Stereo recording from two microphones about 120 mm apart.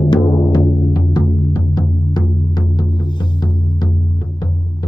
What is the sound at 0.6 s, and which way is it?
Music, 35° left (ahead or behind).